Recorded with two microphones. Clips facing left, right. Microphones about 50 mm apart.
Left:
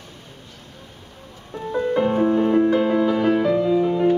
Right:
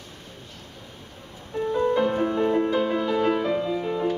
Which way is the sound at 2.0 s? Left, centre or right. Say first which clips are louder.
Left 4 dB; left.